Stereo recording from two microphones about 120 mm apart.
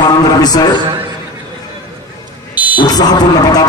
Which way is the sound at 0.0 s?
35° left (ahead or behind).